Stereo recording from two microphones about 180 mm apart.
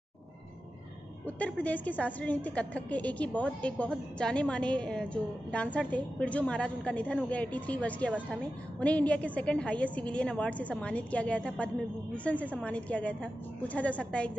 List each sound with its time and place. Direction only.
1.2 s a woman's voice: 10° left (ahead or behind)